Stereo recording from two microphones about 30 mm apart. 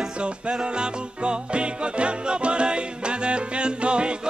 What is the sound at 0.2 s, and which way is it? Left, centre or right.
Music, right.